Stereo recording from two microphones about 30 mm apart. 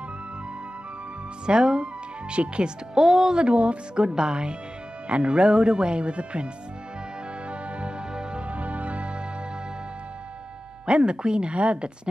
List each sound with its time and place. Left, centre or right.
1.4 s speech: right
2.3 s speech: right
2.9 s speech: centre
3.3 s speech: right
4.0 s speech: right
5.0 s speech: right
8.1 s music: right
8.5 s music: right
10.9 s speech: right
11.5 s speech: right